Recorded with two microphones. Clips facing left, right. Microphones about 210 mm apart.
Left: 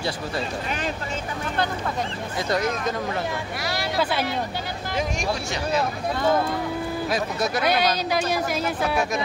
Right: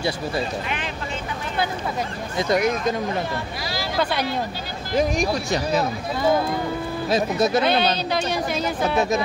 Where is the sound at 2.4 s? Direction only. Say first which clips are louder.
Right 4 dB; 15° right (ahead or behind).